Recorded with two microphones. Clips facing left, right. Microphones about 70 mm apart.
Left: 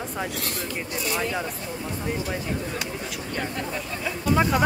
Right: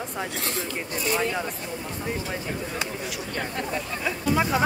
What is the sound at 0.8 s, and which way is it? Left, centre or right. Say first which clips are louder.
Speech: right 1 dB; right.